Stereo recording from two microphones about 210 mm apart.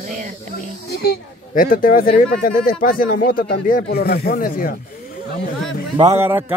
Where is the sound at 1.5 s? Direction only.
40° left (ahead or behind).